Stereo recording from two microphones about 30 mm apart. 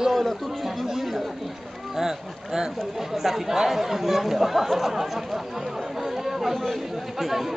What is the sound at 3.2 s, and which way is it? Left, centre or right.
Speech, centre.